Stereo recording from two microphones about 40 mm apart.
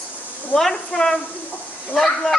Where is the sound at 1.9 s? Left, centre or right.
Centre.